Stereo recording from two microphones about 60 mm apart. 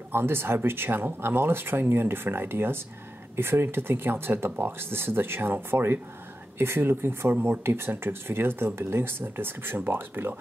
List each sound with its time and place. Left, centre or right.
0.1 s speech: right